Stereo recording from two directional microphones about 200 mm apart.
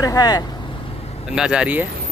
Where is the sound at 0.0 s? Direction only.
20° left (ahead or behind).